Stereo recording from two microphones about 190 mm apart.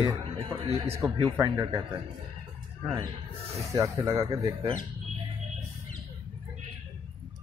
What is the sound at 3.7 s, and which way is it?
Speech, 15° right (ahead or behind).